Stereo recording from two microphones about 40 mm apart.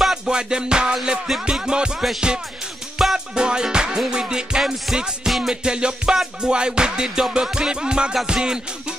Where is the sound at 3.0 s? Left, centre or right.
Centre.